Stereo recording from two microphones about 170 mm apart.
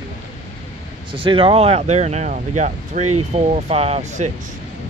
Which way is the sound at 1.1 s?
30° right (ahead or behind).